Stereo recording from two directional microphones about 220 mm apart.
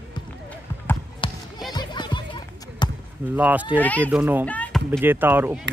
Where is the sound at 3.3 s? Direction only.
5° right (ahead or behind).